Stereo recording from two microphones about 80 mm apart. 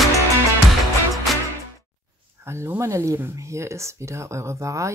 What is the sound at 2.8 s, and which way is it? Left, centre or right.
Speech, right.